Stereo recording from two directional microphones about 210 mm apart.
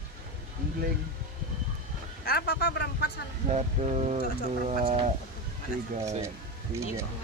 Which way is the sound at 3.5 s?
30° right (ahead or behind).